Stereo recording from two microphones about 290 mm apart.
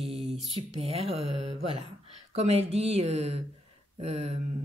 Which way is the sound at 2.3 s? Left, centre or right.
Right.